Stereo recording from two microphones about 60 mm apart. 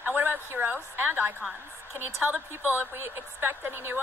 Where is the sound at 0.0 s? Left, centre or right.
Right.